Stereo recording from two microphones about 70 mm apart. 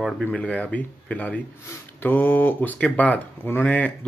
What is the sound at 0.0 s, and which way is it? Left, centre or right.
Speech, centre.